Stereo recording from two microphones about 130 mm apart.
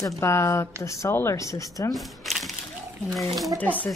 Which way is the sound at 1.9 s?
Centre (ahead or behind).